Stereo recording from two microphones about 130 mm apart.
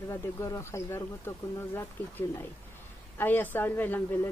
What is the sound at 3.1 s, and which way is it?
Speech, 15° left (ahead or behind).